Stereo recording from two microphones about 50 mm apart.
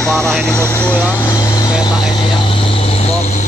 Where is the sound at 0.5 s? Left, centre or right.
Left.